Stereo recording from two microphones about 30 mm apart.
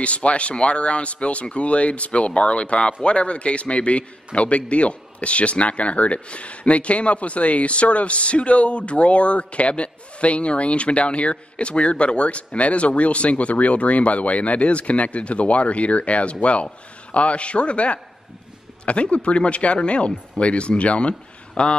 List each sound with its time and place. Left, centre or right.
0.0 s speech: left